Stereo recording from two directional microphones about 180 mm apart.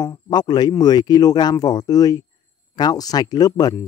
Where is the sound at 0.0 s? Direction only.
20° left (ahead or behind).